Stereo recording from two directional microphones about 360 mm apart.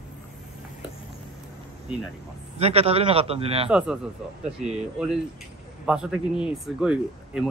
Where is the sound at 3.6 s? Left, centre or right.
Centre.